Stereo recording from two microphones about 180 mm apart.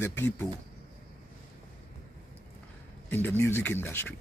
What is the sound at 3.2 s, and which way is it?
Speech, 10° left (ahead or behind).